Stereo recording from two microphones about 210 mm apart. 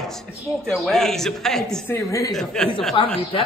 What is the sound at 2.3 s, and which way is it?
Speech, centre (ahead or behind).